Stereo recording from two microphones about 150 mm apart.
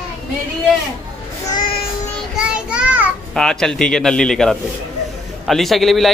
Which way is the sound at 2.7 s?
10° right (ahead or behind).